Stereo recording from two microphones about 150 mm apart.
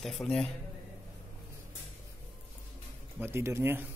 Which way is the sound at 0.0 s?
Centre (ahead or behind).